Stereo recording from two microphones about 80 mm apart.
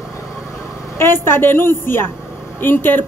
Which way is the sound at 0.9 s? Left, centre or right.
Left.